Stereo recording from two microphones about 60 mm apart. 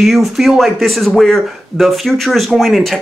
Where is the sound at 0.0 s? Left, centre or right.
Centre.